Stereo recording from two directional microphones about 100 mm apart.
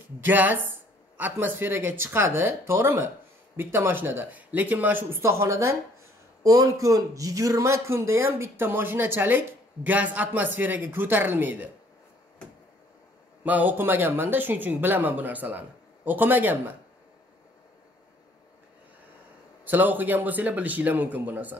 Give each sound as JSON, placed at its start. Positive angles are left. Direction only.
{"t": 0.2, "sound": "a man's voice", "side_deg": -20}
{"t": 13.4, "sound": "speech", "side_deg": -15}
{"t": 19.6, "sound": "a man's voice", "side_deg": -20}